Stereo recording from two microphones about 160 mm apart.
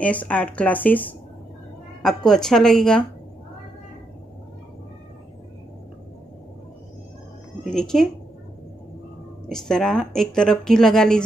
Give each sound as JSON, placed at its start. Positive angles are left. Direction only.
{"t": 0.0, "sound": "speech", "side_deg": 10}
{"t": 2.0, "sound": "speech", "side_deg": 0}
{"t": 7.7, "sound": "speech", "side_deg": 5}
{"t": 9.5, "sound": "speech", "side_deg": 5}